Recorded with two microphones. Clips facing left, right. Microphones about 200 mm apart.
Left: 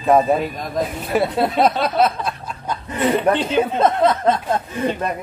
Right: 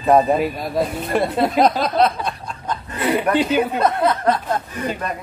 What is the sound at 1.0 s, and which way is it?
Speech, 5° left (ahead or behind).